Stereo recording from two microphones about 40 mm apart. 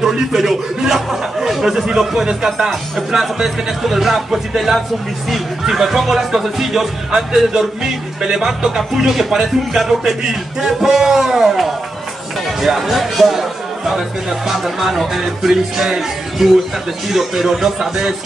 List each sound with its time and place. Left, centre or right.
0.0 s music: centre
12.4 s speech: centre
15.8 s music: centre